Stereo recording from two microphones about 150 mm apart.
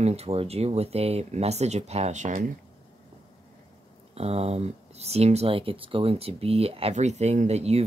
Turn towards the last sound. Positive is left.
turn(degrees=-45)  # may be behind; listen again after turning